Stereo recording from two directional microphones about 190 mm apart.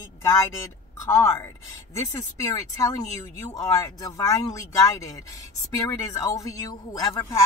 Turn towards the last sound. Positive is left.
turn(degrees=15)  # may be behind; listen again after turning